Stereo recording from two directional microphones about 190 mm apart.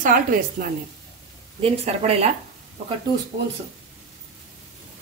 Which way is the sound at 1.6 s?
35° right (ahead or behind).